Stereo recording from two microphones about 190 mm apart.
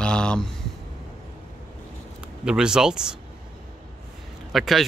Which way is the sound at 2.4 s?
5° right (ahead or behind).